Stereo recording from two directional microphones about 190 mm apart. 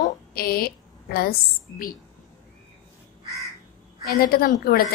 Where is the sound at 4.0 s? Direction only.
50° left (ahead or behind).